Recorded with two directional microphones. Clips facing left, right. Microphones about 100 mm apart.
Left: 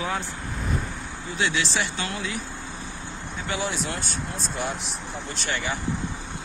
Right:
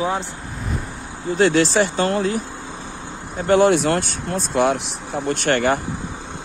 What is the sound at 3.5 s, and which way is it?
Speech, 60° right (ahead or behind).